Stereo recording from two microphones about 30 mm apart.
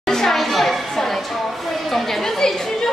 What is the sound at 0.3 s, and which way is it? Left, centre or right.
Children playing, centre.